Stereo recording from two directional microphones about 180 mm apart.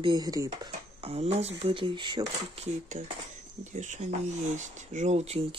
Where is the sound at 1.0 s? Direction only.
35° right (ahead or behind).